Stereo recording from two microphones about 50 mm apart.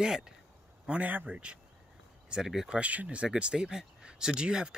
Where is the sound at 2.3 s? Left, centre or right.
Centre.